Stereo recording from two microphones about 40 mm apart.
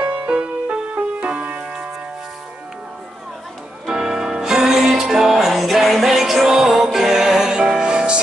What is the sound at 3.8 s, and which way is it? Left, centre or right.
Music, centre.